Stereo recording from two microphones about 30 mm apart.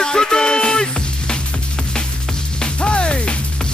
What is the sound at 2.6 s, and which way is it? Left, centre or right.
Music, left.